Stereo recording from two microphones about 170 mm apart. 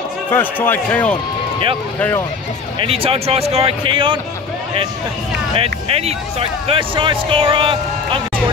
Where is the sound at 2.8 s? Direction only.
35° right (ahead or behind).